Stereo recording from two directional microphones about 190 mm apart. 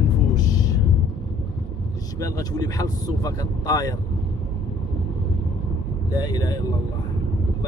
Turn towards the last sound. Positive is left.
turn(degrees=20)  # may be behind; listen again after turning